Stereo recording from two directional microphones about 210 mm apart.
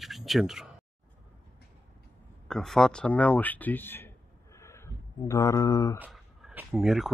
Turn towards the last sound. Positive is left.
turn(degrees=0)  # may be behind; listen again after turning